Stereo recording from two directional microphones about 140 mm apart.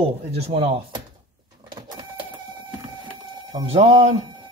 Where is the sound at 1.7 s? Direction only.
30° right (ahead or behind).